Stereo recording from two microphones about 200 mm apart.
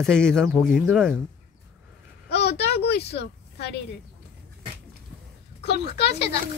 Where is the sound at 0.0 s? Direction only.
5° left (ahead or behind).